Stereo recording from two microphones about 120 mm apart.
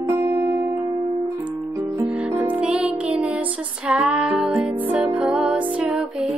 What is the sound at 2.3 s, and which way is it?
Music, 10° right (ahead or behind).